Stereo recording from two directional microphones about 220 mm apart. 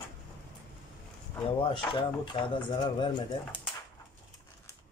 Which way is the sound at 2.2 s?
20° left (ahead or behind).